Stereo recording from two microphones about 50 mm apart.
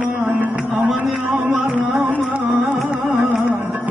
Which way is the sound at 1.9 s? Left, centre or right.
Right.